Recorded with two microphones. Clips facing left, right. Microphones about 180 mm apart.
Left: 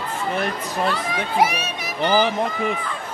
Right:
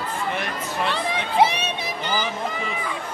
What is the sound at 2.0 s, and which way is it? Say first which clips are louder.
Speech: left 9 dB; 60° left (ahead or behind).